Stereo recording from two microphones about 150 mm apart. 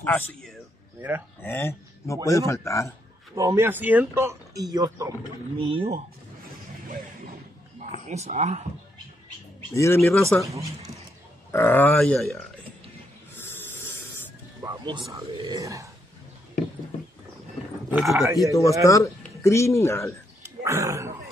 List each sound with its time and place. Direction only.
0.0 s a man's voice: 5° left (ahead or behind)
3.3 s speech: 20° right (ahead or behind)
5.6 s speech: 35° right (ahead or behind)
8.1 s speech: 50° right (ahead or behind)
9.8 s speech: 15° left (ahead or behind)
10.4 s speech: 20° right (ahead or behind)
11.5 s speech: 15° left (ahead or behind)
13.4 s snoring: 15° left (ahead or behind)
14.6 s speech: 25° right (ahead or behind)
17.8 s speech: 5° right (ahead or behind)
18.1 s speech: 20° right (ahead or behind)
18.5 s a man's voice: 20° left (ahead or behind)
20.4 s speech: 20° right (ahead or behind)